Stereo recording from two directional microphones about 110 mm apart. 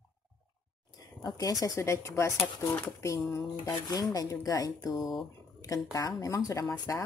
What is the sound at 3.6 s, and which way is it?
Speech, 40° left (ahead or behind).